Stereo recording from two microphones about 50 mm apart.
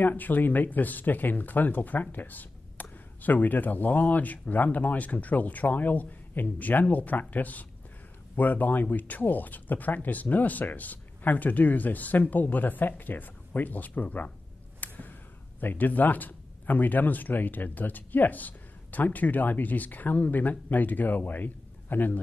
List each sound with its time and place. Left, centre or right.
0.0 s speech: left
14.8 s a sound: left
15.6 s speech: left